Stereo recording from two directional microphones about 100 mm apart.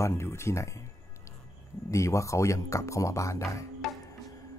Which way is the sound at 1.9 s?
30° left (ahead or behind).